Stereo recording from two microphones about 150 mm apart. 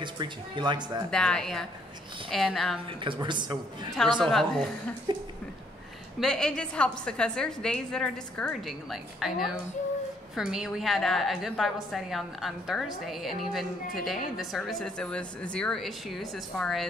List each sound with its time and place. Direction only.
0.0 s speech: 30° right (ahead or behind)
1.1 s a woman's voice: 5° left (ahead or behind)
2.9 s a woman's voice: 35° right (ahead or behind)
4.2 s a woman's voice: centre (ahead or behind)
5.1 s speech: 30° right (ahead or behind)
6.1 s a woman's voice: 5° left (ahead or behind)